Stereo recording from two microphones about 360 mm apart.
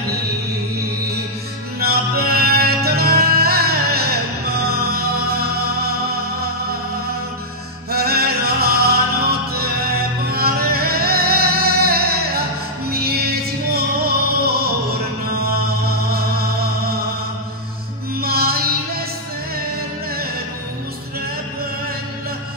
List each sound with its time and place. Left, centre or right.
1.8 s music: right
7.9 s music: right
10.3 s music: right
16.1 s music: right
18.2 s music: right